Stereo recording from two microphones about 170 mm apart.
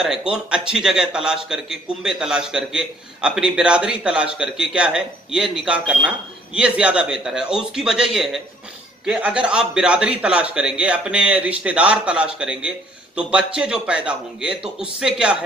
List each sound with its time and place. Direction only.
0.0 s a man's voice: 5° right (ahead or behind)